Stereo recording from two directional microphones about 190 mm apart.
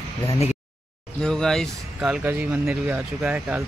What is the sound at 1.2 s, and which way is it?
Speech, 5° left (ahead or behind).